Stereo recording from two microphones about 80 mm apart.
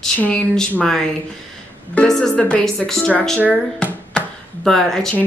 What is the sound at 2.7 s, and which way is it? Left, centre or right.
Speech, centre.